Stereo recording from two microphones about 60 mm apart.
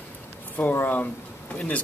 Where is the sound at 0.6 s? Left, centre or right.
Left.